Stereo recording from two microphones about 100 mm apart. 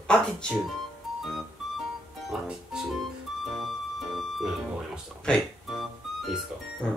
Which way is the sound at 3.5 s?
Centre (ahead or behind).